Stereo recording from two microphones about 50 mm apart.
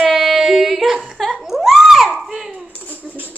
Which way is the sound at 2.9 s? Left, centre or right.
Right.